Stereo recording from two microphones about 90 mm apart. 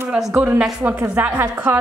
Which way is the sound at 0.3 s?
15° right (ahead or behind).